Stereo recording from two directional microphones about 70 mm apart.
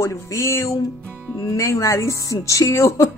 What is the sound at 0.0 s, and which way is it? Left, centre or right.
Speech, left.